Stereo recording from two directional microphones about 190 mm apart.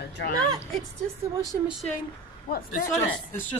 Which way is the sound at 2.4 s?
50° left (ahead or behind).